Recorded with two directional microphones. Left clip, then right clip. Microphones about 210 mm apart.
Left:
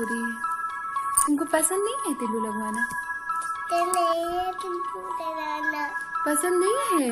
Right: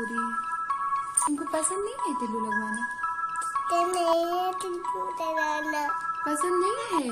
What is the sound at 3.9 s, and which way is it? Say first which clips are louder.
Child singing: left 1 dB; 25° right (ahead or behind).